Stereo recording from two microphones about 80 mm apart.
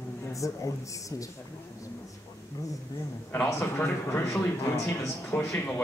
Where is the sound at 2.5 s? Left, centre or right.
Left.